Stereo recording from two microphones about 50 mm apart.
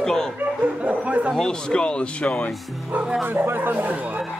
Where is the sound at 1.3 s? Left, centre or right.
Centre.